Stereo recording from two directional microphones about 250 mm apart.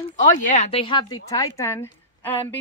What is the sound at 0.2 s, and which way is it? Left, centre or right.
Speech, left.